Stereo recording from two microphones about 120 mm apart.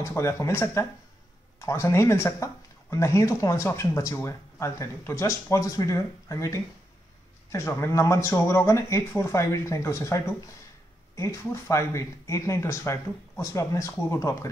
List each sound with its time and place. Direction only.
0.0 s speech: 25° left (ahead or behind)